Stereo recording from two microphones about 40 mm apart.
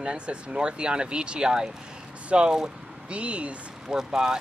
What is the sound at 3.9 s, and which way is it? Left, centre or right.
Speech, centre.